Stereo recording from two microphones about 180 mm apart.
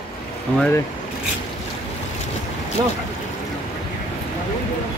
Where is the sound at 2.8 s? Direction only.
20° right (ahead or behind).